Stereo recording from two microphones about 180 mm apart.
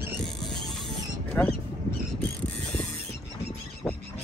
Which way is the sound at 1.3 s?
5° left (ahead or behind).